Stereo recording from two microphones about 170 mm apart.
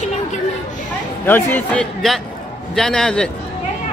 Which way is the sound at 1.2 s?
10° left (ahead or behind).